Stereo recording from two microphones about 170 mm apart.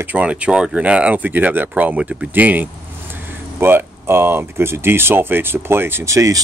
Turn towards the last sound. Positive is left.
turn(degrees=-20)  # may be behind; listen again after turning